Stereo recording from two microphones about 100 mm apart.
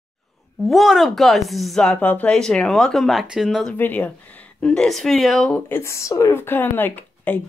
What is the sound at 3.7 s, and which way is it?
Speech, 20° left (ahead or behind).